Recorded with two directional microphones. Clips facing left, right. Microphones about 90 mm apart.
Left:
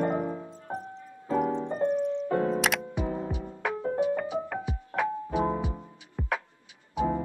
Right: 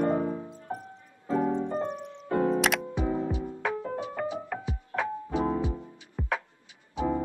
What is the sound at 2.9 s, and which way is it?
Music, 15° left (ahead or behind).